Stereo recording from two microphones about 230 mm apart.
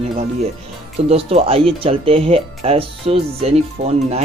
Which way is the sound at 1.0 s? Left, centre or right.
Right.